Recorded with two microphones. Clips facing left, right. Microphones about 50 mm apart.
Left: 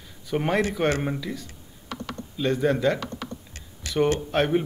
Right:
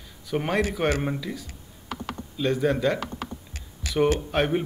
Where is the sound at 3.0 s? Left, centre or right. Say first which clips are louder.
Right 1 dB; centre.